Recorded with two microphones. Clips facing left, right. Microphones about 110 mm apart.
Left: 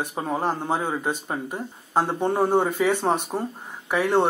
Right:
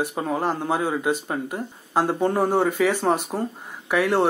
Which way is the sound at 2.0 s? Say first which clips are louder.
Right 1 dB; 10° right (ahead or behind).